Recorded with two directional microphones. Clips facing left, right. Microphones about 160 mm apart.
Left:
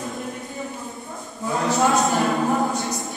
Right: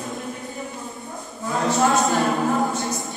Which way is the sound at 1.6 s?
Centre (ahead or behind).